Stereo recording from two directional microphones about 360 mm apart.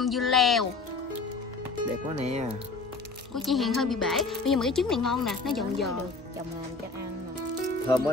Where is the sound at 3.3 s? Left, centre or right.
Centre.